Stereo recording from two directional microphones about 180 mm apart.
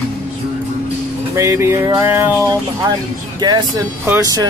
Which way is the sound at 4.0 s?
15° right (ahead or behind).